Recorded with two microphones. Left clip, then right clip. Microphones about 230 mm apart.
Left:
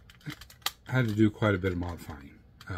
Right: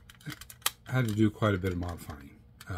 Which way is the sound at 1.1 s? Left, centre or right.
Centre.